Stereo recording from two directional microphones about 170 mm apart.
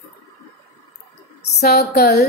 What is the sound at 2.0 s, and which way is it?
Speech, 70° left (ahead or behind).